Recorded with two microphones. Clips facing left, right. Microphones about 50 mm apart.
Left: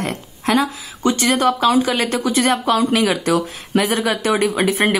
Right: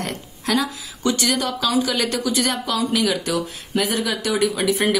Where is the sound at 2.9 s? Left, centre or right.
Left.